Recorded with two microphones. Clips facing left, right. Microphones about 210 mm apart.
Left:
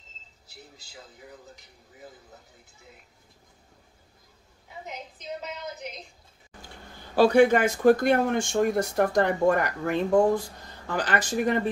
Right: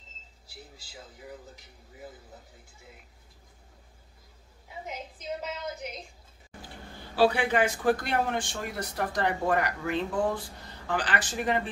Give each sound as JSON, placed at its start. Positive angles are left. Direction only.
{"t": 7.2, "sound": "speech", "side_deg": 45}